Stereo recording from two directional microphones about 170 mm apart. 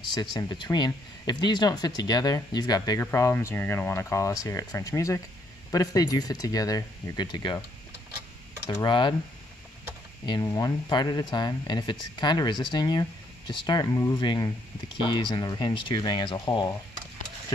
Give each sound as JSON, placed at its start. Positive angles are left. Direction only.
{"t": 0.1, "sound": "speech", "side_deg": 25}
{"t": 8.6, "sound": "speech", "side_deg": 25}
{"t": 10.2, "sound": "speech", "side_deg": 25}